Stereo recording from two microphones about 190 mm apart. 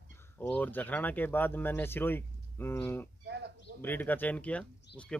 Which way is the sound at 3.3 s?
60° right (ahead or behind).